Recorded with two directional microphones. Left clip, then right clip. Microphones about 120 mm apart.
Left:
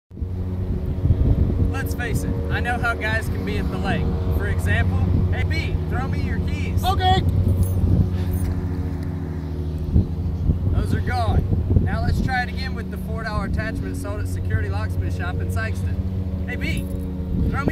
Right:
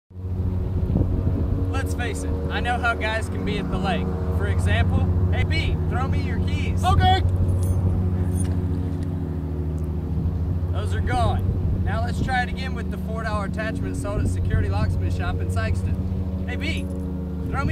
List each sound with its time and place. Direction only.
2.5 s speech: 10° left (ahead or behind)
6.8 s speech: 30° right (ahead or behind)
11.1 s speech: centre (ahead or behind)